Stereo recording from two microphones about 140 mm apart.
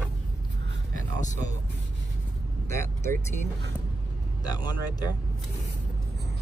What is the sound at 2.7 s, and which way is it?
Speech, 20° left (ahead or behind).